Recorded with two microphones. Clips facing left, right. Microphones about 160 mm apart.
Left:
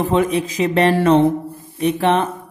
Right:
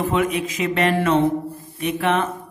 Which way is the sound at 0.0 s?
35° left (ahead or behind).